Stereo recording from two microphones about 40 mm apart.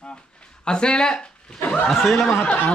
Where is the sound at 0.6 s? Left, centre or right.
Left.